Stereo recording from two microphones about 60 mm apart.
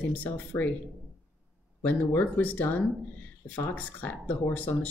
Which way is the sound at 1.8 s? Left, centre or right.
Left.